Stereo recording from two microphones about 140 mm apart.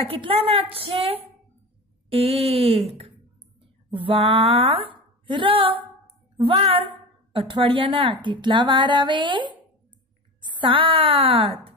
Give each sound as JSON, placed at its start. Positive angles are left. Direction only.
{"t": 0.1, "sound": "a woman's voice", "side_deg": -40}